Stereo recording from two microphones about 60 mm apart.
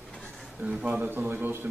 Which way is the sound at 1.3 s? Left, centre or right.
Right.